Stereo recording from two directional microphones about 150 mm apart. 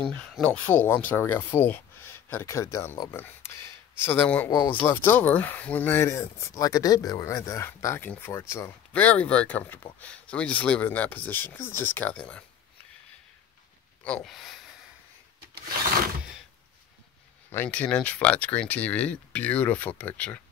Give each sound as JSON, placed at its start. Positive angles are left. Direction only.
{"t": 0.0, "sound": "speech", "side_deg": 5}
{"t": 14.0, "sound": "speech", "side_deg": 5}
{"t": 17.5, "sound": "speech", "side_deg": 10}